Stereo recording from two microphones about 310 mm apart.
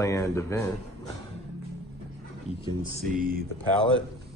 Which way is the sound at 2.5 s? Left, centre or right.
Left.